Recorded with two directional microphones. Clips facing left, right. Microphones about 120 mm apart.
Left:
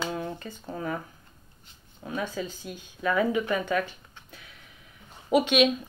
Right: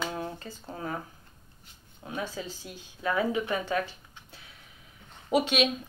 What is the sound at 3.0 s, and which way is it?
Speech, 25° right (ahead or behind).